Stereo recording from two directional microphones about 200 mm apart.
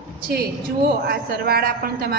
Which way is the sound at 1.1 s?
50° right (ahead or behind).